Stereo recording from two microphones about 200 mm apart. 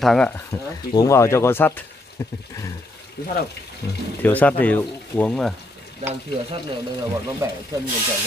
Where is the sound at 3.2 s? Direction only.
50° left (ahead or behind).